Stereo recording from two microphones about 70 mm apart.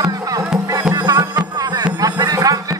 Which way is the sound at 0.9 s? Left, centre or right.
Right.